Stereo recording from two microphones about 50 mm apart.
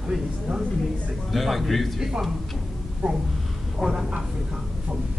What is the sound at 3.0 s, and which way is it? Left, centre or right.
Speech, right.